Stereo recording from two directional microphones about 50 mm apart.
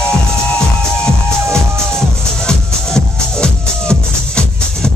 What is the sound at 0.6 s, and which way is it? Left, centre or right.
Music, centre.